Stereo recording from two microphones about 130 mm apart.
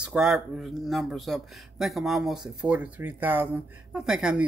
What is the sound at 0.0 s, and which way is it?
Speech, 5° right (ahead or behind).